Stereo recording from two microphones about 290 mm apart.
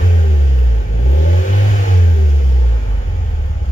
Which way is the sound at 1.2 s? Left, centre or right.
Left.